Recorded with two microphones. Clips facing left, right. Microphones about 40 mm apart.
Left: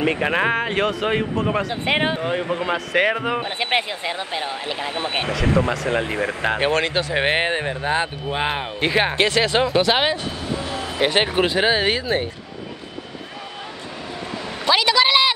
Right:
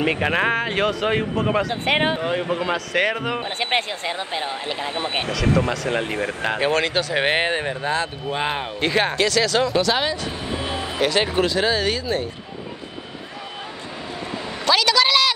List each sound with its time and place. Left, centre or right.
0.2 s speech: centre
2.6 s speech: centre
4.7 s speech: left
5.9 s speech: centre
6.6 s speech: left
7.2 s speech: centre
9.1 s speech: left
10.5 s music: right
11.0 s speech: left
14.6 s a woman's voice: left